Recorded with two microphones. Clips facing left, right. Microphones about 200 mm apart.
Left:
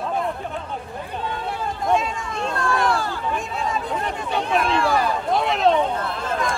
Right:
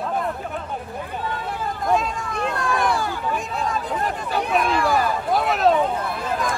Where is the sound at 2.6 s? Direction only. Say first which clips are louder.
Left 2 dB; 15° right (ahead or behind).